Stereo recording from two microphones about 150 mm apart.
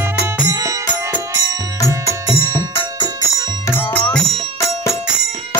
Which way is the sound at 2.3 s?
20° right (ahead or behind).